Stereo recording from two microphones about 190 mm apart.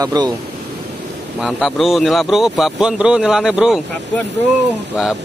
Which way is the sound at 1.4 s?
Centre (ahead or behind).